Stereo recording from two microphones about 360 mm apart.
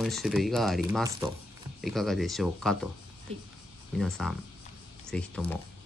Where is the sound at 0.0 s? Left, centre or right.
Centre.